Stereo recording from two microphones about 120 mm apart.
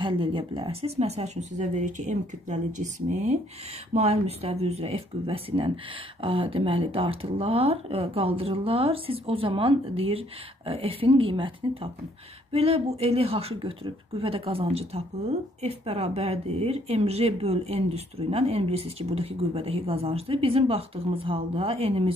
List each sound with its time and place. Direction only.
0.0 s speech: 45° right (ahead or behind); by 3.3 s 70° right (ahead or behind)
3.9 s a woman's voice: 60° right (ahead or behind)